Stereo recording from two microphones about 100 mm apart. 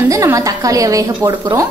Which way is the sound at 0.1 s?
30° right (ahead or behind).